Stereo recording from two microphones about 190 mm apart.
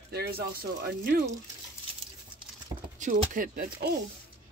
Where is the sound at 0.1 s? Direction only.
55° right (ahead or behind).